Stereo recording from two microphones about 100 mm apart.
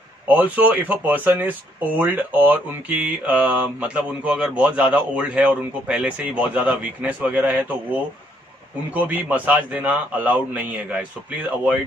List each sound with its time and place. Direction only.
0.3 s mantra: 15° right (ahead or behind)
8.9 s mantra: 15° right (ahead or behind)